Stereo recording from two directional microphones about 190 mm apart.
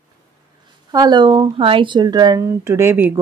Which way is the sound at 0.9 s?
20° right (ahead or behind).